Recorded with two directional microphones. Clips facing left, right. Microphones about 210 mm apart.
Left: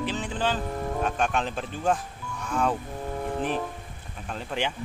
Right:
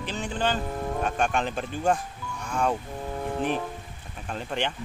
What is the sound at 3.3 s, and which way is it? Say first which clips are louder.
Speech: right 3 dB; centre (ahead or behind).